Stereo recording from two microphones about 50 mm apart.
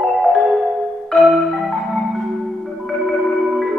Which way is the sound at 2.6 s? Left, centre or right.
Centre.